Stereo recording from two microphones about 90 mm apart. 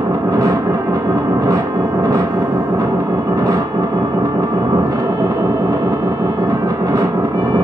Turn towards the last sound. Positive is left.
turn(degrees=-40)  # may be behind; listen again after turning